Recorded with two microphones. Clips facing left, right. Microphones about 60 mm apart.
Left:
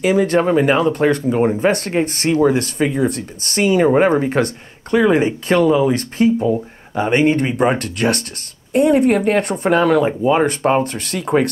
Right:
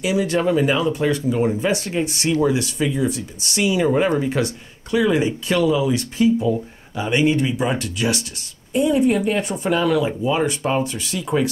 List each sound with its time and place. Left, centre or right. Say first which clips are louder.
0.0 s speech: left 5 dB; left